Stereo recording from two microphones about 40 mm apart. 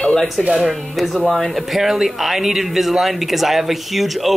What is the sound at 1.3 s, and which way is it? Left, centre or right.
Speech, centre.